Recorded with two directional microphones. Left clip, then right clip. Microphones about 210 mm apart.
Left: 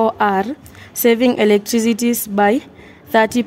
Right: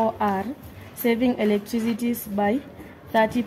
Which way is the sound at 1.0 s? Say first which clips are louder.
Left 9 dB; 55° left (ahead or behind).